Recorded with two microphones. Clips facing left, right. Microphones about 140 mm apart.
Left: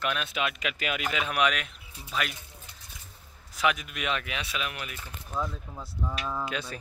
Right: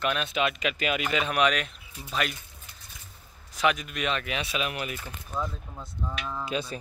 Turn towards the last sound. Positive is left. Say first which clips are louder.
# right 4 dB
turn(degrees=-30)  # may be behind; listen again after turning